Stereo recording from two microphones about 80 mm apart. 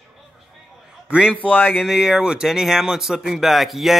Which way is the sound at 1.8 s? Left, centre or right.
Centre.